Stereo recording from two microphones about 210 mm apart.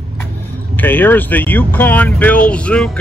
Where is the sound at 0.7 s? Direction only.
10° left (ahead or behind).